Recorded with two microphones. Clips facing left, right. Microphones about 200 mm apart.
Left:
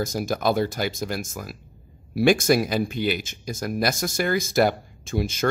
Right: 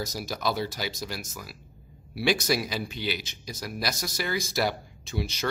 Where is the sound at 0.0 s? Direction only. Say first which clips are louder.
Left 7 dB; 50° left (ahead or behind).